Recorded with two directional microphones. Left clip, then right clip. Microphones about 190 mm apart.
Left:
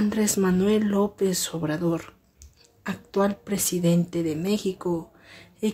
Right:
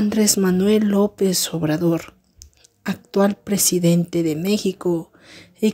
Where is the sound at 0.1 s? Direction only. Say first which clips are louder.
Right 5 dB; 30° right (ahead or behind).